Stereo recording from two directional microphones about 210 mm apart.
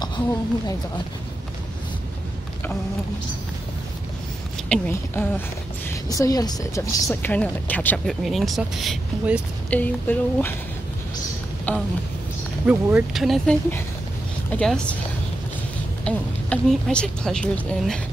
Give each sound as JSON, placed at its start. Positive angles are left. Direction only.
{"t": 4.6, "sound": "speech", "side_deg": 10}
{"t": 9.7, "sound": "speech", "side_deg": 10}
{"t": 11.7, "sound": "speech", "side_deg": 5}
{"t": 16.0, "sound": "speech", "side_deg": 5}